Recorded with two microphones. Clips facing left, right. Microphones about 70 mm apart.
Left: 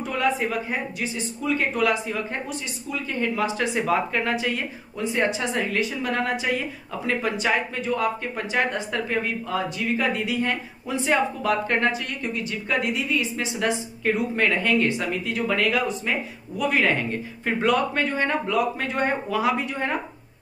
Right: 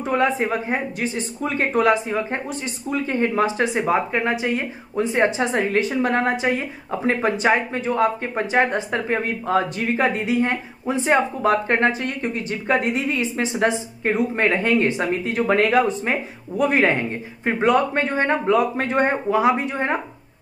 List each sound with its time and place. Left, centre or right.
0.0 s a woman's voice: right